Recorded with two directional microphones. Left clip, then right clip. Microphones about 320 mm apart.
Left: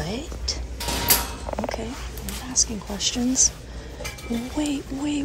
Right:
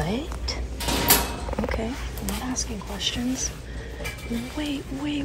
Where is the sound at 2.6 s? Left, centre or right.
Centre.